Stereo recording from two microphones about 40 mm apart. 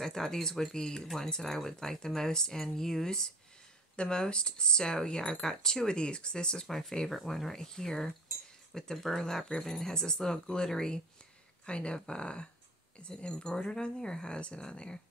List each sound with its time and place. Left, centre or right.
0.0 s speech: centre
6.7 s speech: centre